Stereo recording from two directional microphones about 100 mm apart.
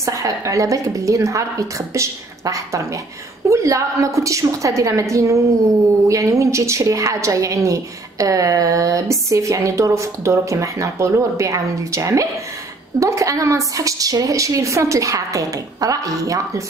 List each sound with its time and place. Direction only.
0.0 s a woman's voice: 35° right (ahead or behind)